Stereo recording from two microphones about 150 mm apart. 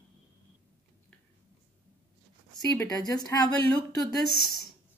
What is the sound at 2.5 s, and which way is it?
Speech, 25° left (ahead or behind).